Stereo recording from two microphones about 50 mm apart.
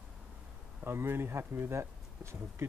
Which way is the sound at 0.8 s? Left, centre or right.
Right.